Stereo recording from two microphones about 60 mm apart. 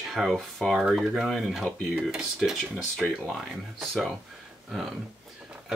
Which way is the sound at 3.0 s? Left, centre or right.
Centre.